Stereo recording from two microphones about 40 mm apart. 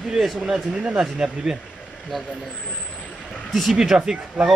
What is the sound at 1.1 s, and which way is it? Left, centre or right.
Speech, centre.